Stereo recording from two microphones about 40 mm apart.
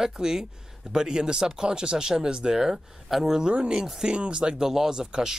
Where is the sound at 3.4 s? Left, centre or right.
Right.